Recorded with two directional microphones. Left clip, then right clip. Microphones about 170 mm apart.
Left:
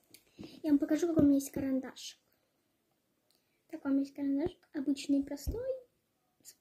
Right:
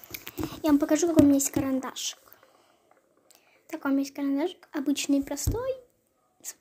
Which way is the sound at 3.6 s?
5° left (ahead or behind).